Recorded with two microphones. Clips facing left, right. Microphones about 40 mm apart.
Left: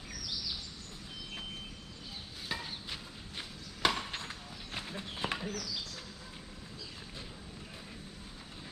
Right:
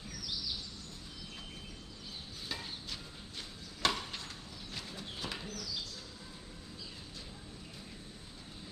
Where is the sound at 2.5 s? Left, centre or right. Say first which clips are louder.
Left 3 dB; left.